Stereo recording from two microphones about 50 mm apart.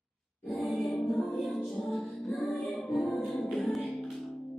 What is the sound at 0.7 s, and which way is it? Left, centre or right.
Music, centre.